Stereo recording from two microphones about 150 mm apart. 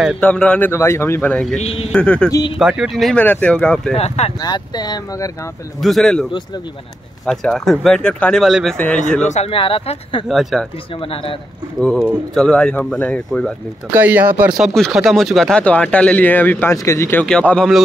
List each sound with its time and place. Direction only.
0.2 s a man's voice: 10° left (ahead or behind)
1.6 s speech: 40° left (ahead or behind)
1.9 s a man's voice: 5° left (ahead or behind)
2.6 s speech: 5° right (ahead or behind)
3.9 s speech: 45° left (ahead or behind)
4.4 s speech: 25° left (ahead or behind)
5.8 s speech: centre (ahead or behind)
7.2 s a man's voice: 5° left (ahead or behind)
9.2 s speech: 50° left (ahead or behind)
10.2 s speech: centre (ahead or behind)
11.0 s speech: 40° left (ahead or behind)
12.4 s speech: 5° left (ahead or behind)
13.9 s speech: 10° right (ahead or behind)